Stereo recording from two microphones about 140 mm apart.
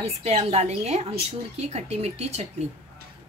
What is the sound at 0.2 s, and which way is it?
Speech, 50° right (ahead or behind).